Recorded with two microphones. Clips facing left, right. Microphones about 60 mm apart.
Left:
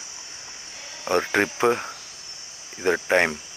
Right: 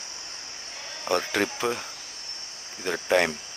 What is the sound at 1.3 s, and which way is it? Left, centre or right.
Speech, left.